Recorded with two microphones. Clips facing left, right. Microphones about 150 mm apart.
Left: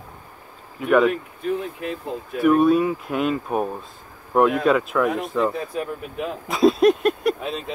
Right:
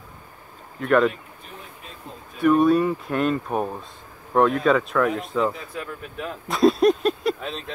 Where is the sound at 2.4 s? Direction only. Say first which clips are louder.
Left 1 dB; 5° left (ahead or behind).